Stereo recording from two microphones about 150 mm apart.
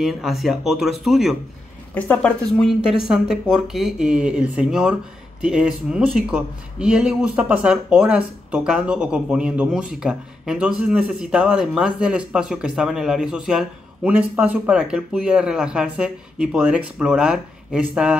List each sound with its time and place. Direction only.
0.0 s speech: centre (ahead or behind)
2.0 s a woman's voice: 10° left (ahead or behind)
2.9 s speech: 5° right (ahead or behind)